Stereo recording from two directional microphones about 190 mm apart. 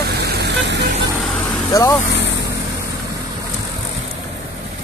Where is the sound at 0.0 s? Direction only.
60° right (ahead or behind).